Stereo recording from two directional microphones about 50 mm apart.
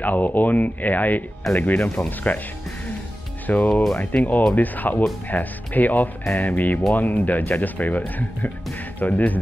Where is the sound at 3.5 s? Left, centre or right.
Left.